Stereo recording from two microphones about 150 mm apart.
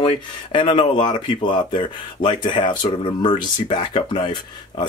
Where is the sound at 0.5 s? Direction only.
35° left (ahead or behind).